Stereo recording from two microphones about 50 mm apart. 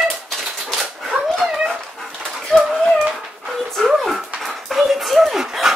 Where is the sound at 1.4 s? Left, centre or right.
Centre.